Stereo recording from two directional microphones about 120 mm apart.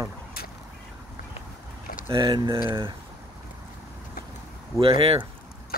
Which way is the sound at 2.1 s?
40° right (ahead or behind).